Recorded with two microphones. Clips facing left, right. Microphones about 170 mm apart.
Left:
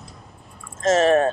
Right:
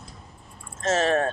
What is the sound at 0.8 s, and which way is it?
Speech, 30° left (ahead or behind).